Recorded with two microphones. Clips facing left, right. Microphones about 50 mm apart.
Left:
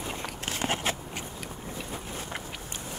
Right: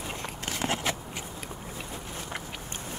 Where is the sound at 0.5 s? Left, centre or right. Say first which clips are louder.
Even; left.